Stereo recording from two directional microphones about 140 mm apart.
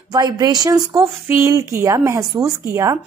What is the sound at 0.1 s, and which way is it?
A woman's voice, 30° right (ahead or behind).